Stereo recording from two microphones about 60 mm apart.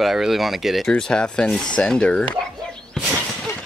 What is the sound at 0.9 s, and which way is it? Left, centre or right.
Speech, centre.